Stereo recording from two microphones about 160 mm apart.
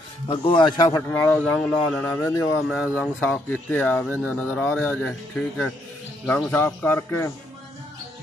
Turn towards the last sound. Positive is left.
turn(degrees=15)  # may be behind; listen again after turning